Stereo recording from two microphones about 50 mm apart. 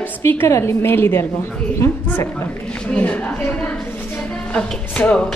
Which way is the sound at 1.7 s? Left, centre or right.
Left.